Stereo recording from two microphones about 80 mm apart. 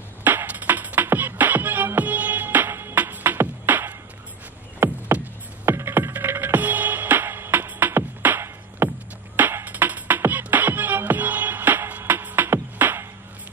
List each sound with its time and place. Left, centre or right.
0.2 s music: right
4.7 s a sound: right
5.8 s music: right